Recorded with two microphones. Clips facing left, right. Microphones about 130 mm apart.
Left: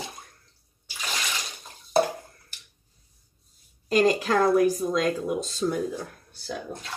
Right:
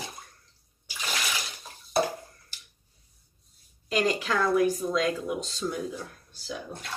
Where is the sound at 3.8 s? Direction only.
40° left (ahead or behind).